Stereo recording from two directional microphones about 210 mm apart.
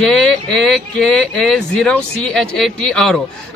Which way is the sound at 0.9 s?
5° left (ahead or behind).